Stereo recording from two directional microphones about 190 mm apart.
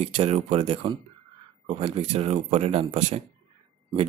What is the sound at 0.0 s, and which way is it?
Speech, 30° right (ahead or behind).